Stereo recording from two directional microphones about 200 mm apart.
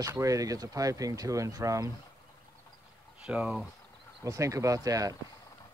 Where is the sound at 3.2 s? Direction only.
5° right (ahead or behind).